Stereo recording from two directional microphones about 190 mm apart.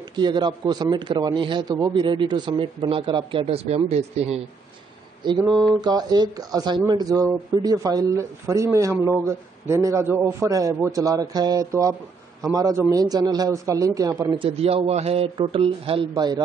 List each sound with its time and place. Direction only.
0.1 s a man's voice: 25° right (ahead or behind)